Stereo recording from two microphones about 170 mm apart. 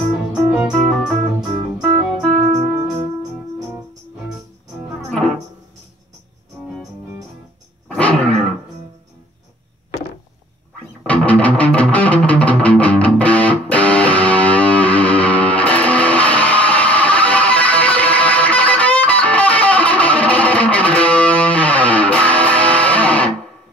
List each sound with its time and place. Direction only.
0.0 s organ: centre (ahead or behind)
1.8 s music: 5° right (ahead or behind)
5.1 s music: 5° left (ahead or behind)
7.9 s dog: 5° left (ahead or behind)
11.1 s music: 10° left (ahead or behind)